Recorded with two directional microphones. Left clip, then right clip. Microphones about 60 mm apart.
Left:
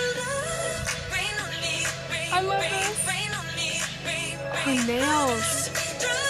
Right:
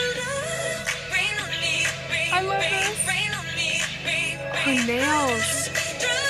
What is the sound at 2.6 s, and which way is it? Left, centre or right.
Music, left.